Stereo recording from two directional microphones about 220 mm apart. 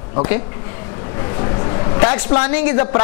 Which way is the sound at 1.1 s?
20° left (ahead or behind).